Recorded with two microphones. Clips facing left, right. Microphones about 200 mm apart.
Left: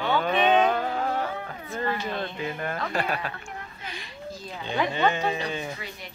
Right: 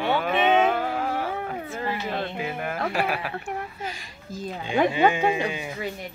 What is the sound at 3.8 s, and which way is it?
Speech, 40° right (ahead or behind).